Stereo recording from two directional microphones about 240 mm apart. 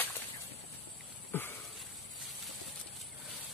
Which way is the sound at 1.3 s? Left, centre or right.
Centre.